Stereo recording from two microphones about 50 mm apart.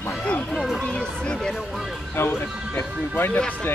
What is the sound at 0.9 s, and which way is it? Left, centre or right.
Speech, left.